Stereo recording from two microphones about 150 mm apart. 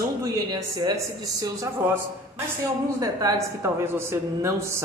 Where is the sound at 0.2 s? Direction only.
25° right (ahead or behind).